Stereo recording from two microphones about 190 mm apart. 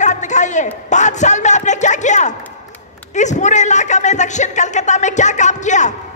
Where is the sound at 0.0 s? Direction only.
40° left (ahead or behind).